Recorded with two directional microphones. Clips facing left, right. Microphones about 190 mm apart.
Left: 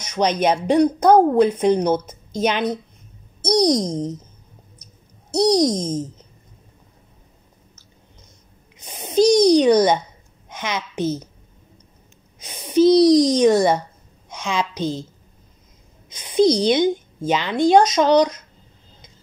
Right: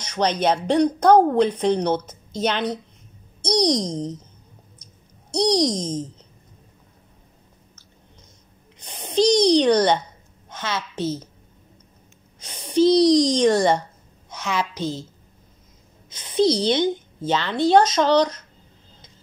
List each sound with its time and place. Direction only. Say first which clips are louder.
0.0 s speech: left 2 dB; 10° left (ahead or behind)
5.3 s speech: left 3 dB; 5° left (ahead or behind)
8.7 s a child's voice: left 3 dB; 10° left (ahead or behind)
12.4 s speech: left 2 dB; 10° left (ahead or behind)
16.1 s speech: left 3 dB; 15° left (ahead or behind)